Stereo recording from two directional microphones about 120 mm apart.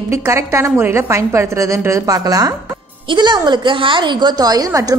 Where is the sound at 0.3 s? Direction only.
25° right (ahead or behind).